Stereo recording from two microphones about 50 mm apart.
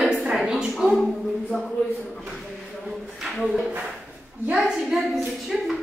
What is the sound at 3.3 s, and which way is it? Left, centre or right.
Speech, centre.